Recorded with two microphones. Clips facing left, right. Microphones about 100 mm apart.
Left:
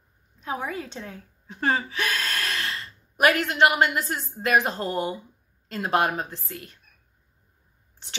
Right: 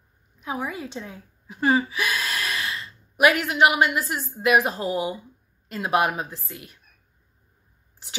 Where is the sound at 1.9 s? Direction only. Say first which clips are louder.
Right 1 dB; 40° left (ahead or behind).